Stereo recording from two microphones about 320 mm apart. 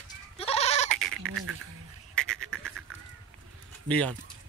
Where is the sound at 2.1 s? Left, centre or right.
Centre.